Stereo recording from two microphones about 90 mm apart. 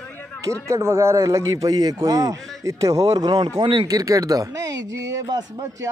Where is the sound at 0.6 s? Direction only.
35° right (ahead or behind); by 3.9 s 60° right (ahead or behind).